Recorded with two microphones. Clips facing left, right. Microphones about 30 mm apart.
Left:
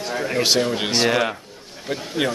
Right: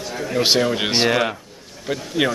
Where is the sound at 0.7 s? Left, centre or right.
Centre.